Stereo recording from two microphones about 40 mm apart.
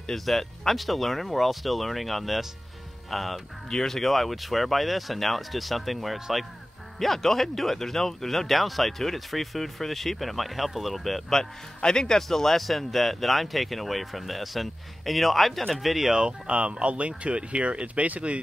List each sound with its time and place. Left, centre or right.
0.0 s speech: centre
6.1 s speech: centre
7.0 s speech: centre
16.1 s speech: centre
16.4 s speech: right